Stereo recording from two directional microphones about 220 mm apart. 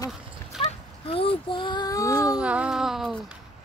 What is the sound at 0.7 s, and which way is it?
Child singing, 25° left (ahead or behind).